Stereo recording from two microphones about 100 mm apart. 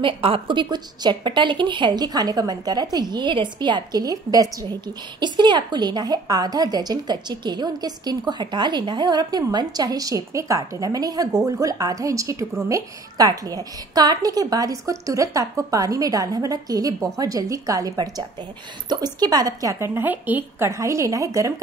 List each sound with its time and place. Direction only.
0.0 s a woman's voice: 60° right (ahead or behind); by 21.5 s 30° right (ahead or behind)